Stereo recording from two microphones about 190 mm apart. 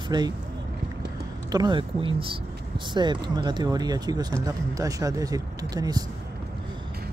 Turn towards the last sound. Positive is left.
turn(degrees=-20)  # may be behind; listen again after turning